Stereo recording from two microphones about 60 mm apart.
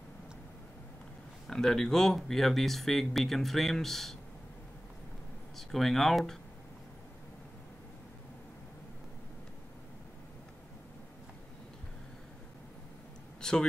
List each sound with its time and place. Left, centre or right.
1.5 s speech: centre
5.6 s speech: centre
13.4 s a sound: centre